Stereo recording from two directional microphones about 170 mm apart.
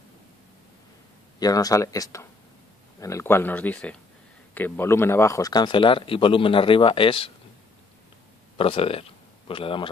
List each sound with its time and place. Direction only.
1.4 s speech: 20° left (ahead or behind)
8.5 s speech: 30° left (ahead or behind)